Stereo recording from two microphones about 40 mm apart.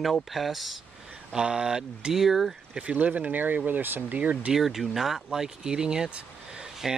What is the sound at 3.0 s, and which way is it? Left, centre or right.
Speech, right.